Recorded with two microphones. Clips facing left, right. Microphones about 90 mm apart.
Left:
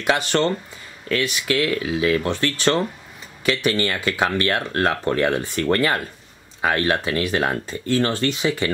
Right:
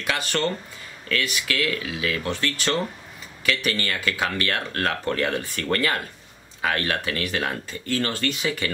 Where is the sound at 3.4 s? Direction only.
25° left (ahead or behind).